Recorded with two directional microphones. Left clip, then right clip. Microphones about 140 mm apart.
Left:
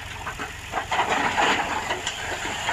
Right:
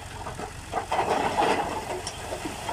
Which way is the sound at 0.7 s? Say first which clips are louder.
Left 2 dB; 15° right (ahead or behind).